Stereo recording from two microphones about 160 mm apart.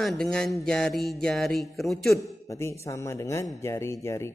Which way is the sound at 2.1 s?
15° left (ahead or behind).